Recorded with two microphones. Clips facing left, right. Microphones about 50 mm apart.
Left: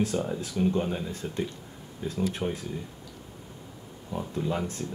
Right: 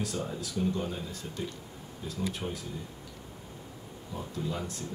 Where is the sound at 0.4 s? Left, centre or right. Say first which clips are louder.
Left 3 dB; left.